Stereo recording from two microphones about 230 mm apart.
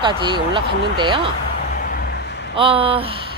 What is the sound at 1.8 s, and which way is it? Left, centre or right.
Vehicle, left.